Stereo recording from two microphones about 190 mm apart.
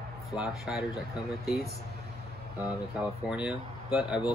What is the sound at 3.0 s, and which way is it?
Speech, 5° right (ahead or behind).